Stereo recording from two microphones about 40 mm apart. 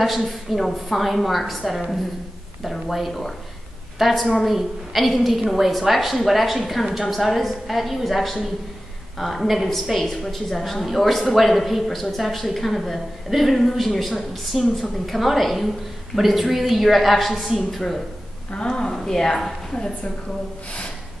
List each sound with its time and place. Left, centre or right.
0.0 s a woman's voice: centre
18.7 s a woman's voice: centre